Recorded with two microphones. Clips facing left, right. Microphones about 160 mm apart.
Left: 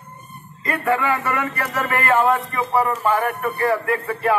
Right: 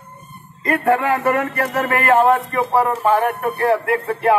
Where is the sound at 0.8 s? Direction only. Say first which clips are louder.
Right 4 dB; 55° right (ahead or behind).